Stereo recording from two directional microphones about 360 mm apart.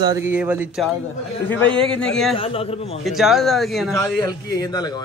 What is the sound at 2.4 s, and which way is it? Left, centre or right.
Speech, centre.